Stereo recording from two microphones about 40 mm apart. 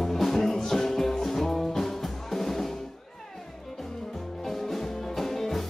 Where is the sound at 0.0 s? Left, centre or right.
Centre.